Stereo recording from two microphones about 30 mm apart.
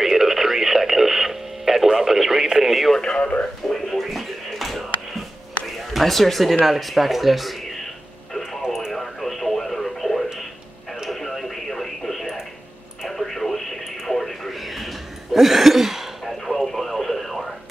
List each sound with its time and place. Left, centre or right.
0.0 s radio: centre
3.6 s a sound: centre
5.9 s speech: centre
8.4 s radio: centre
8.9 s radio: centre
14.5 s a sound: centre
16.3 s radio: centre